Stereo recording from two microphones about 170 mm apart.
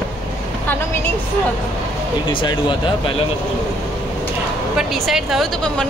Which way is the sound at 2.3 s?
30° left (ahead or behind).